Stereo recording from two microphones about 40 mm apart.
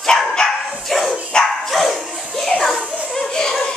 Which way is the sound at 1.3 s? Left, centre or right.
Left.